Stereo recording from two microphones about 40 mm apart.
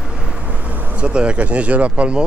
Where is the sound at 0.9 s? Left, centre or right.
Right.